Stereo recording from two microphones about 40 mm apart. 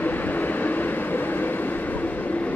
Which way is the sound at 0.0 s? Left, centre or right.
Left.